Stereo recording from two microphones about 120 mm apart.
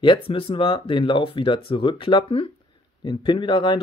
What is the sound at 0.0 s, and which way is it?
Speech, 45° left (ahead or behind).